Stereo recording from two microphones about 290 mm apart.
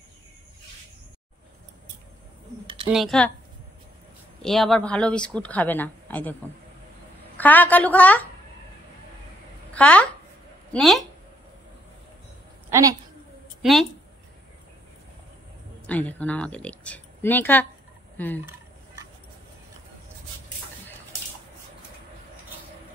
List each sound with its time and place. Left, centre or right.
2.6 s a sound: centre
2.9 s speech: centre
4.4 s speech: centre
7.3 s speech: centre
9.8 s speech: centre
12.6 s a sound: centre
13.6 s a woman's voice: centre
15.9 s speech: centre
18.1 s gobble: centre